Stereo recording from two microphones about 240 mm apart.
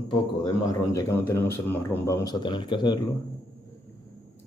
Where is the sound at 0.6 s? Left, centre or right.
Centre.